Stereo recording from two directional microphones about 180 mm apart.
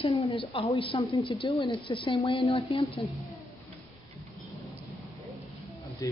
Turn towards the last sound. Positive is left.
turn(degrees=20)  # may be behind; listen again after turning